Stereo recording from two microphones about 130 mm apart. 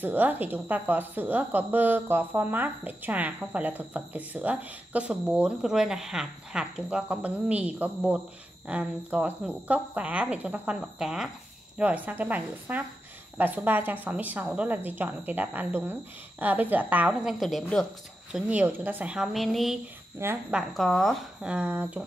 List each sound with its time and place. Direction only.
0.0 s speech: 15° right (ahead or behind); by 17.8 s centre (ahead or behind)
18.3 s a woman's voice: 10° right (ahead or behind)
20.2 s speech: 20° right (ahead or behind)
20.5 s a woman's voice: 5° left (ahead or behind)
21.5 s speech: 10° right (ahead or behind)